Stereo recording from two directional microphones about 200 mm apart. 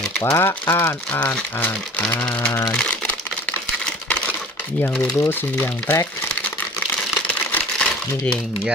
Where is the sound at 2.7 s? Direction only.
5° left (ahead or behind).